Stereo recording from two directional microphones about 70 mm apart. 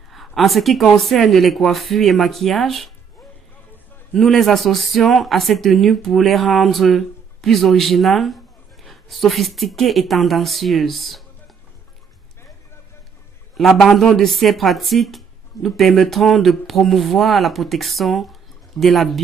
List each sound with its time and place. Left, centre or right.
0.1 s a woman's voice: centre
4.1 s a woman's voice: centre
13.6 s a woman's voice: centre